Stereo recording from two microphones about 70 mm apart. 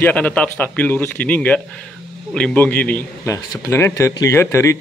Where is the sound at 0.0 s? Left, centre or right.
Left.